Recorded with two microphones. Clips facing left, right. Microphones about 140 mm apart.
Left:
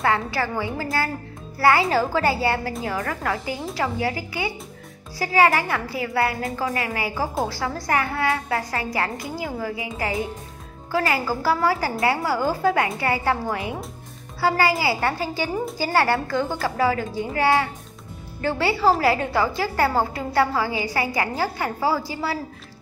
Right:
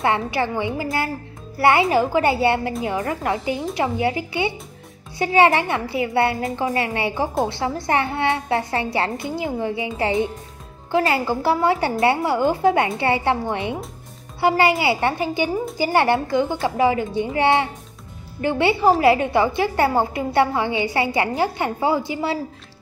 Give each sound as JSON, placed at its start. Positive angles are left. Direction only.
{"t": 0.0, "sound": "a woman's voice", "side_deg": -20}